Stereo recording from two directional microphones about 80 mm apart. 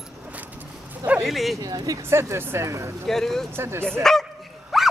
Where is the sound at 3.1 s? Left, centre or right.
Centre.